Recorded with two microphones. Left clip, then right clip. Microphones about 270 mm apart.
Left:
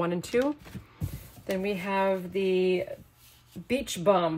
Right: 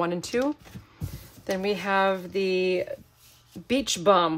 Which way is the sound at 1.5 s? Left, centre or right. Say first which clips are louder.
Right 4 dB; centre.